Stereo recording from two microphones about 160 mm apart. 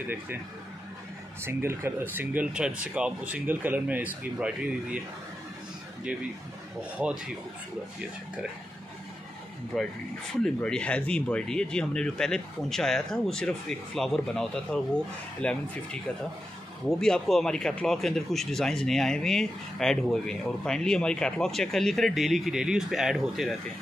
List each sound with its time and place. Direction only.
1.4 s speech: 15° right (ahead or behind)
6.8 s speech: 5° right (ahead or behind)
9.7 s speech: centre (ahead or behind)
17.0 s speech: 5° left (ahead or behind)